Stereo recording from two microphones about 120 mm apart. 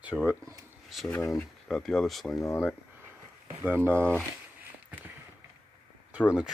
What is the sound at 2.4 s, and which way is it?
Speech, 20° left (ahead or behind).